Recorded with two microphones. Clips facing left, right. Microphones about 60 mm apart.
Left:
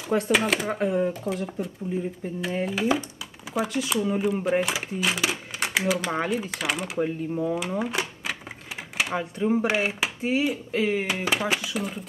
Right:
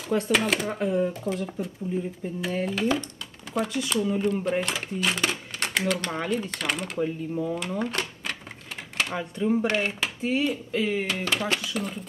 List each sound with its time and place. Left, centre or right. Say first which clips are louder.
0.1 s speech: left 1 dB; centre
7.0 s speech: left 2 dB; left
7.8 s typewriter: left 1 dB; centre
8.9 s speech: left 2 dB; centre